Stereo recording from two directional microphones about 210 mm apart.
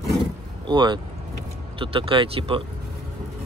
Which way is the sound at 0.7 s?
20° right (ahead or behind).